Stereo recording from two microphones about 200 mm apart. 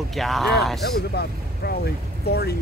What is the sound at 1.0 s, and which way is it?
Speech, 55° left (ahead or behind).